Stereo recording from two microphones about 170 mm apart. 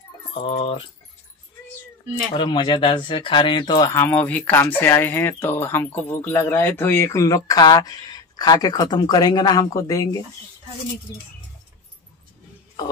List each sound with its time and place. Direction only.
0.3 s speech: 35° left (ahead or behind)
2.3 s speech: 30° left (ahead or behind)